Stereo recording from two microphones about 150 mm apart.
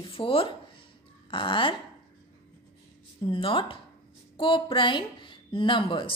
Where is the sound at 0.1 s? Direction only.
40° left (ahead or behind).